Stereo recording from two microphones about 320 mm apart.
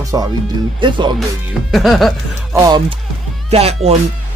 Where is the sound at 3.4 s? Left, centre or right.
Centre.